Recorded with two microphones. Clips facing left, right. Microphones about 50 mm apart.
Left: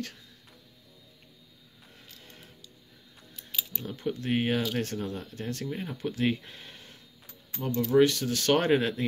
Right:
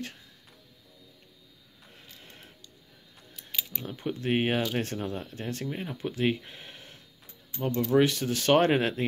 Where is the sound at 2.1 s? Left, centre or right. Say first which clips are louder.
Right 1 dB; right.